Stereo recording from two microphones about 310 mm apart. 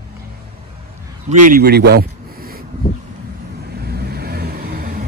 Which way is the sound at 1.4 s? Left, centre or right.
Right.